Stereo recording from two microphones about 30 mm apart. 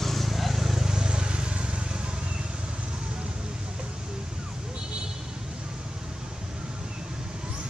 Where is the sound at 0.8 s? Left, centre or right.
Right.